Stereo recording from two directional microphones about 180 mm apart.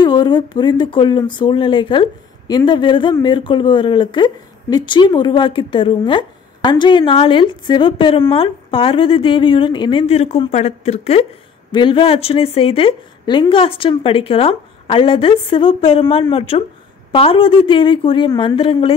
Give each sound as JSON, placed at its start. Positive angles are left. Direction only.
{"t": 0.0, "sound": "a woman's voice", "side_deg": 25}